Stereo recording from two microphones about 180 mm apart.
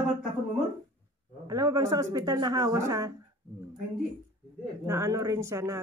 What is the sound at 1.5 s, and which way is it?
Speech, 20° right (ahead or behind).